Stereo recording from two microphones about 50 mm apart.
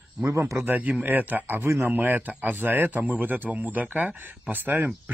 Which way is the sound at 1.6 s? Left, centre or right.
Right.